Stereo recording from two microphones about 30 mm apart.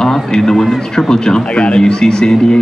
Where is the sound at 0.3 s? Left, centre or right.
Centre.